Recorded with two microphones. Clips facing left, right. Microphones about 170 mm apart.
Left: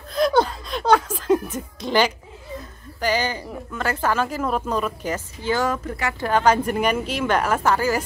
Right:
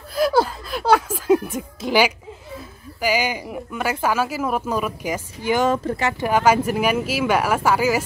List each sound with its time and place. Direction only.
0.1 s a sound: 5° right (ahead or behind)
5.9 s speech: 25° right (ahead or behind)
6.2 s speech: 10° right (ahead or behind)